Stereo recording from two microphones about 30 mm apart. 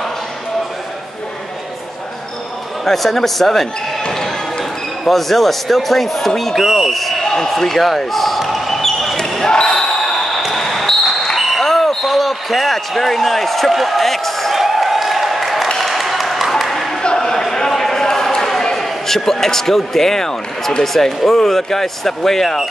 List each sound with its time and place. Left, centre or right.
2.8 s speech: centre
5.0 s speech: centre
6.6 s a man's voice: centre
7.0 s basketball bounce: centre
7.4 s speech: centre
8.1 s basketball bounce: centre
9.7 s basketball bounce: left
11.3 s a sound: centre
11.6 s basketball bounce: centre
13.7 s speech: centre
14.5 s a sound: centre
17.2 s a sound: centre
18.3 s speech: centre